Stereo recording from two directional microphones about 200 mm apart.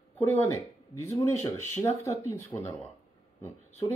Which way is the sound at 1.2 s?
15° left (ahead or behind).